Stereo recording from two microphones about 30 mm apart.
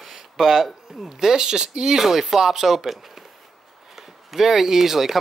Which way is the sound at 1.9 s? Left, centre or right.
Centre.